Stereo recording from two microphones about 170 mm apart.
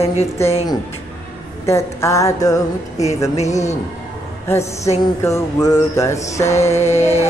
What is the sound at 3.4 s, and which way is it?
Speech, 45° left (ahead or behind).